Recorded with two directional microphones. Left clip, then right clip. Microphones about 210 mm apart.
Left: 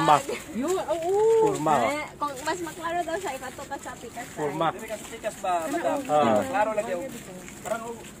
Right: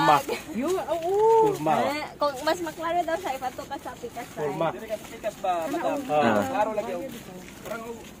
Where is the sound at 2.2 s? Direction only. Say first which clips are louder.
Right 7 dB; 55° right (ahead or behind).